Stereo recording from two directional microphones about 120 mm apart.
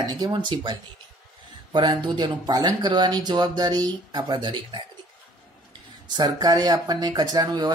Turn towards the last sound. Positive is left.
turn(degrees=-35)  # may be behind; listen again after turning